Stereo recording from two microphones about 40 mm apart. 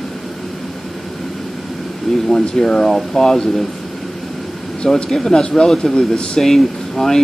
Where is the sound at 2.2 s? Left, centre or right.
Centre.